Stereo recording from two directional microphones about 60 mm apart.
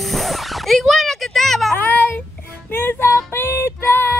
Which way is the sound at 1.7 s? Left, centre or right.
Left.